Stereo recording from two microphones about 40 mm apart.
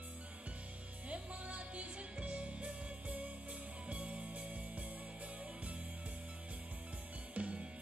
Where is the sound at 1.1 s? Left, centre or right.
Right.